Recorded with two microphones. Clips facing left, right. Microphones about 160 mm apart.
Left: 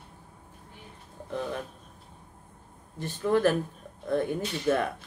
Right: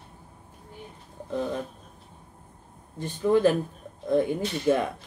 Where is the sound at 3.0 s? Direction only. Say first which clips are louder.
Right 3 dB; 15° right (ahead or behind).